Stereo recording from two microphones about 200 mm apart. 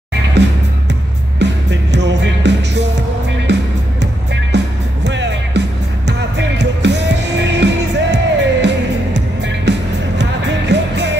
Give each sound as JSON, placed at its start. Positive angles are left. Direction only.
{"t": 0.4, "sound": "music", "side_deg": -60}